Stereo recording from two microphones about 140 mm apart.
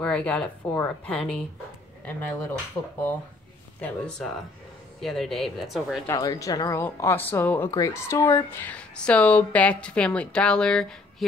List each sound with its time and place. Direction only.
0.0 s speech: 5° left (ahead or behind)
3.8 s speech: 5° left (ahead or behind)
6.0 s speech: 25° left (ahead or behind); by 11.2 s 5° left (ahead or behind)